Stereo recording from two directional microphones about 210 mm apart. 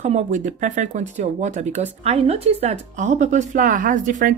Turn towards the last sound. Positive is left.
turn(degrees=-40)  # may be behind; listen again after turning